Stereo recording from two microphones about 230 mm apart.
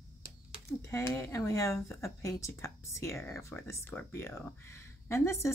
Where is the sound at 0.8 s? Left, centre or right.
Centre.